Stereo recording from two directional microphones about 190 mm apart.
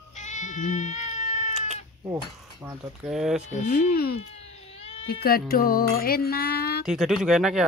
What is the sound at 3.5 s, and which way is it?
Music, 50° left (ahead or behind).